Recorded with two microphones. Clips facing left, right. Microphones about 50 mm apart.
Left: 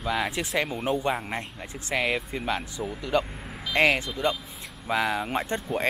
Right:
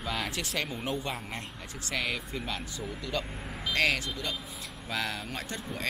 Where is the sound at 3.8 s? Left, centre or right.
Left.